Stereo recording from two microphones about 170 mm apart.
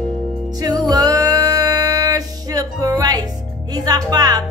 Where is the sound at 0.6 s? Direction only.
25° right (ahead or behind).